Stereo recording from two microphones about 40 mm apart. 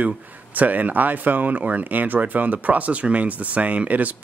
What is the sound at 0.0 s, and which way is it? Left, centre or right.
Speech, right.